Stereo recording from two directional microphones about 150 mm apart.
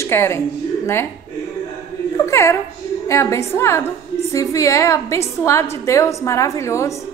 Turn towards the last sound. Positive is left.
turn(degrees=20)  # may be behind; listen again after turning